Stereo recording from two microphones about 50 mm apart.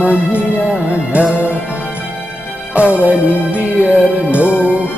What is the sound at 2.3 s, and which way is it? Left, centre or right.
Music, left.